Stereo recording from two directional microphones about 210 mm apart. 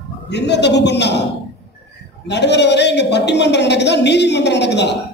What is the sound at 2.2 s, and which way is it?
A man's voice, 55° left (ahead or behind).